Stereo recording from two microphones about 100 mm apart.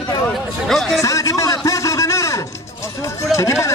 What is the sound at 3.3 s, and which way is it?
Speech, 30° left (ahead or behind).